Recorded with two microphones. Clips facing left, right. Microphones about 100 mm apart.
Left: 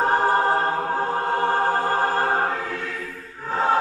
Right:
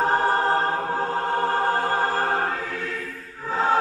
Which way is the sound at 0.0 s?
10° left (ahead or behind).